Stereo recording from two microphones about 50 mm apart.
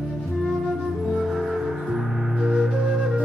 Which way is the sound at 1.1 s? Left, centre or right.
Centre.